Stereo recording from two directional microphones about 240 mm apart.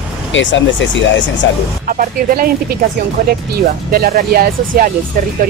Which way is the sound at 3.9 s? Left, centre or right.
Right.